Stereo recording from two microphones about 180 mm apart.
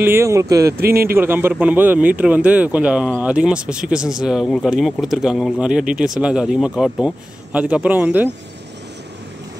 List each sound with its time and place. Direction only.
0.0 s speech: 15° right (ahead or behind)
0.7 s a man's voice: 55° right (ahead or behind)
1.1 s speech: 10° right (ahead or behind)